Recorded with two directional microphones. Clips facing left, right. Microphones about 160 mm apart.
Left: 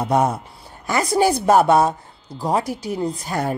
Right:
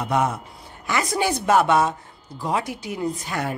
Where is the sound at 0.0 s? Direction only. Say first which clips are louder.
Left 4 dB; 35° left (ahead or behind).